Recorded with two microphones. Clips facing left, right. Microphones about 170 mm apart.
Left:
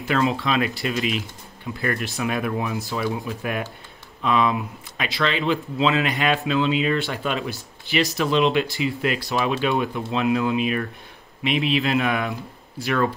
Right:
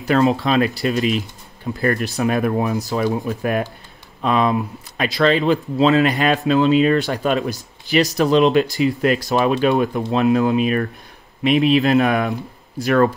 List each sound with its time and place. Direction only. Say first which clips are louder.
0.0 s speech: right 6 dB; 40° right (ahead or behind)